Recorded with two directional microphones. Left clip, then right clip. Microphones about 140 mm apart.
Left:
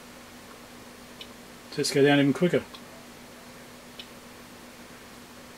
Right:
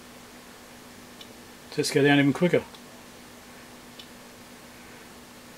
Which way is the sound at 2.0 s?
35° right (ahead or behind).